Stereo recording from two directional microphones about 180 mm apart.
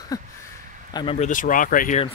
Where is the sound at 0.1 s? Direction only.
20° left (ahead or behind).